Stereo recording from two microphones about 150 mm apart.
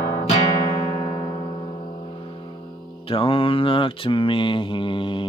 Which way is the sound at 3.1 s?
35° left (ahead or behind).